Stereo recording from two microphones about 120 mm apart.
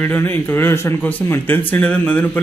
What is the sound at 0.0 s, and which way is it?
Speech, 15° left (ahead or behind).